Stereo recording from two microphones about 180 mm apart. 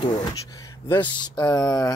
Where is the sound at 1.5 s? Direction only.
20° left (ahead or behind).